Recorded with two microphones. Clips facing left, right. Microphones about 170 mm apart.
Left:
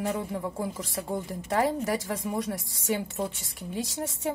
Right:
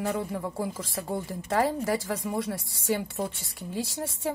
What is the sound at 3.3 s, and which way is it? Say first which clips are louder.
Speech: right 1 dB; 20° left (ahead or behind).